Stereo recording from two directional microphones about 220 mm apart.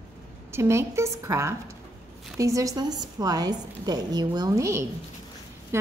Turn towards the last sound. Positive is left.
turn(degrees=-15)  # may be behind; listen again after turning